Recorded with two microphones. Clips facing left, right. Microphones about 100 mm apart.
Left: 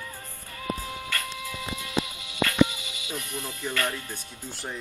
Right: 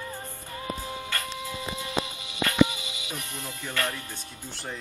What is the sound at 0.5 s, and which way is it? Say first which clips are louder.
Music: left 1 dB; 25° right (ahead or behind).